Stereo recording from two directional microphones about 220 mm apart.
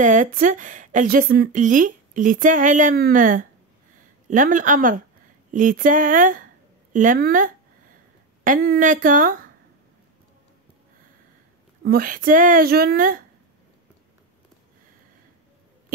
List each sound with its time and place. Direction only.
0.0 s speech: 35° right (ahead or behind)
11.8 s speech: 40° right (ahead or behind)